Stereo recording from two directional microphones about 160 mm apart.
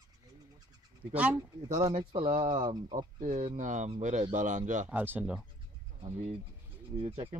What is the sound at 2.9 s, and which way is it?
Speech, 50° right (ahead or behind).